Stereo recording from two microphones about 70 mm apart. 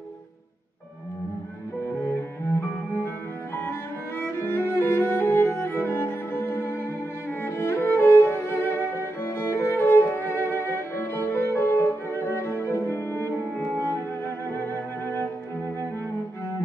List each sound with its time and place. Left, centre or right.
1.9 s cello: left
4.4 s music: left
7.2 s cello: left
8.7 s violin: left
10.3 s violin: right
10.7 s music: left